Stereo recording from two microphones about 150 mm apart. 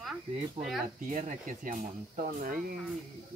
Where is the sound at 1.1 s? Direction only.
55° right (ahead or behind).